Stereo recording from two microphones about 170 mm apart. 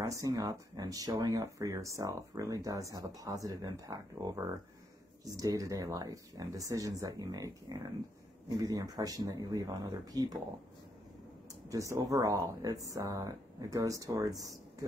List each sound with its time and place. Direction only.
0.0 s speech: 20° right (ahead or behind)
11.7 s speech: 20° right (ahead or behind)